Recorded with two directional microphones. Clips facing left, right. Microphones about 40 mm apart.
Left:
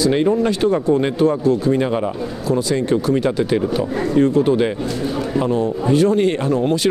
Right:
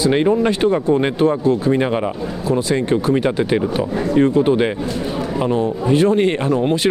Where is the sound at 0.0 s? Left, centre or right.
Right.